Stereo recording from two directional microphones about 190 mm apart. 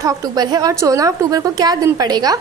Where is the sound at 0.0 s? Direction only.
20° right (ahead or behind).